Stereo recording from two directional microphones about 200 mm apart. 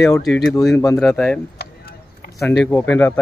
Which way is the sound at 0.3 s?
Centre (ahead or behind).